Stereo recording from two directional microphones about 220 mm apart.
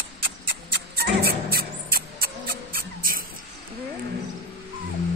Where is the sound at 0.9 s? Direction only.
45° right (ahead or behind).